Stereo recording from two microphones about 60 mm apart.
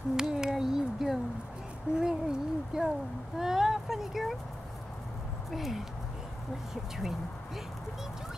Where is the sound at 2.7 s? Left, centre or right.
Centre.